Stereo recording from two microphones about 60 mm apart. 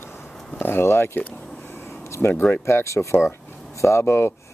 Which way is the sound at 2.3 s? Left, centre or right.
Left.